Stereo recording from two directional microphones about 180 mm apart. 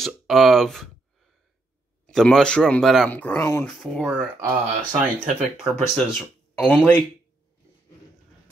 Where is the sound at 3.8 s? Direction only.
Centre (ahead or behind).